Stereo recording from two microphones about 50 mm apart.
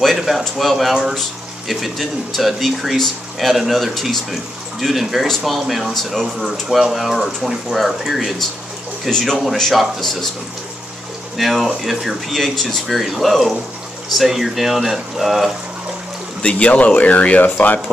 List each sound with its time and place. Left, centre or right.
0.0 s speech: centre
11.3 s speech: centre
16.4 s speech: left